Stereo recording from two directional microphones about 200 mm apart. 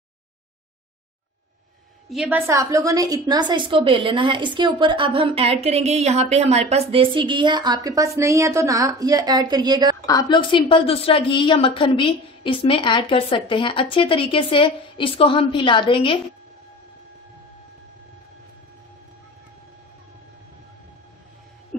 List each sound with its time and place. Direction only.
2.0 s a woman's voice: 5° right (ahead or behind)
10.0 s a woman's voice: 20° left (ahead or behind)